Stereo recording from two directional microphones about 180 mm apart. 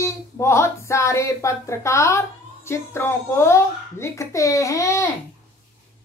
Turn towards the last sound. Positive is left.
turn(degrees=15)  # may be behind; listen again after turning